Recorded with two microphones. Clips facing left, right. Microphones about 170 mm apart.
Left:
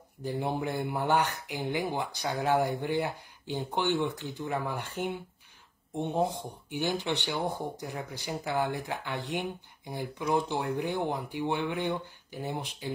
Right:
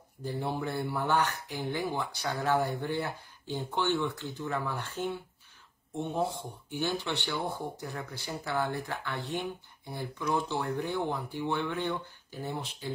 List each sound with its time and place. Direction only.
0.2 s speech: 15° left (ahead or behind)